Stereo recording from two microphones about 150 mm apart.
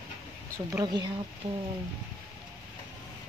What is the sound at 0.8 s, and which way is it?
Speech, 30° right (ahead or behind).